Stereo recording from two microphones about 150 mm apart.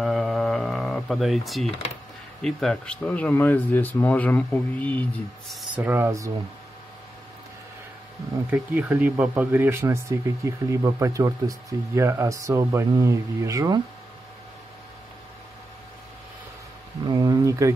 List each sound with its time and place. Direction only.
0.0 s a sound: centre (ahead or behind)
2.4 s speech: 5° left (ahead or behind)
5.5 s speech: centre (ahead or behind)
5.9 s speech: 15° right (ahead or behind)
8.5 s speech: 10° right (ahead or behind)
17.1 s a sound: 25° right (ahead or behind)